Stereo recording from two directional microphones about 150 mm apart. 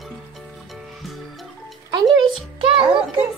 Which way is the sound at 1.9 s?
30° right (ahead or behind).